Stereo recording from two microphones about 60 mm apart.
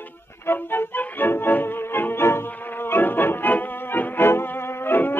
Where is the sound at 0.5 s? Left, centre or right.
Left.